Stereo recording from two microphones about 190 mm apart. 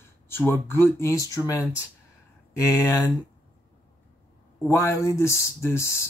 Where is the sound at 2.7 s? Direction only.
15° left (ahead or behind).